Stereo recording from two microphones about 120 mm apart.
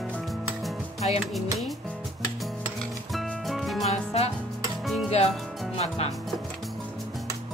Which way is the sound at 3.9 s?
60° left (ahead or behind).